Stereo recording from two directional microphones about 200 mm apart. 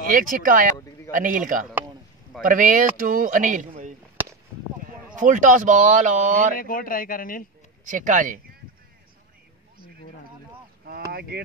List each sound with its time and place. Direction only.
0.1 s speech: 45° right (ahead or behind)
5.2 s speech: 40° right (ahead or behind)
6.6 s speech: 45° left (ahead or behind)
7.8 s speech: 40° right (ahead or behind)
11.1 s speech: 50° right (ahead or behind)